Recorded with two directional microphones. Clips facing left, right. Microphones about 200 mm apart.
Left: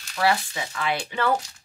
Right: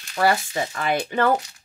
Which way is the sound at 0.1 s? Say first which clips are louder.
Right 3 dB; 50° right (ahead or behind).